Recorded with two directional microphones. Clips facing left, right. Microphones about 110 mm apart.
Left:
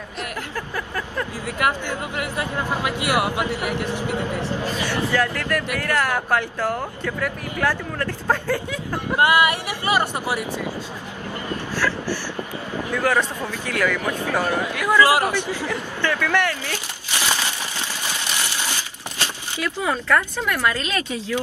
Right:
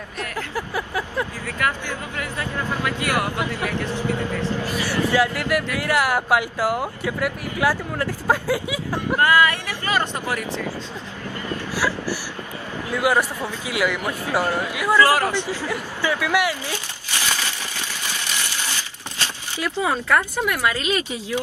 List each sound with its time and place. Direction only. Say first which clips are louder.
0.6 s vehicle: right 3 dB; 10° right (ahead or behind)
1.6 s speech: left 2 dB; 20° left (ahead or behind)
5.1 s speech: right 3 dB; 10° right (ahead or behind)
9.2 s speech: even; 20° left (ahead or behind)
11.7 s speech: even; 10° right (ahead or behind)
15.0 s speech: left 1 dB; 15° left (ahead or behind)
15.7 s speech: right 1 dB; 10° right (ahead or behind)
17.1 s a sound: left 2 dB; 20° left (ahead or behind)
19.6 s speech: right 1 dB; 15° right (ahead or behind)